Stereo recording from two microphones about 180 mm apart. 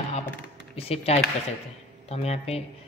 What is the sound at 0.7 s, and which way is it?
Speech, 35° left (ahead or behind).